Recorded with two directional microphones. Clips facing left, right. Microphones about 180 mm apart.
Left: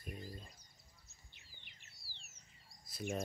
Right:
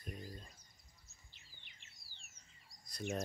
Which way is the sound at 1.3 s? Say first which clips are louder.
Left 3 dB; 50° left (ahead or behind).